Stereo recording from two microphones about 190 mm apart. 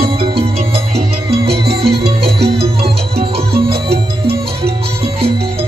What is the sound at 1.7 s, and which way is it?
Music, 60° right (ahead or behind).